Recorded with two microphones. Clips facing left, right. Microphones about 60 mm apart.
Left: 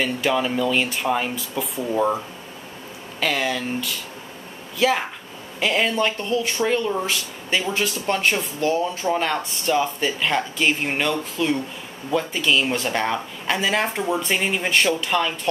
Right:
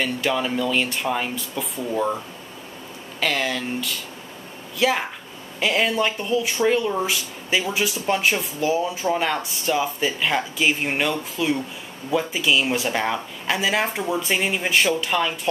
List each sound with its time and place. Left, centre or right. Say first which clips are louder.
0.0 s speech: left 1 dB; centre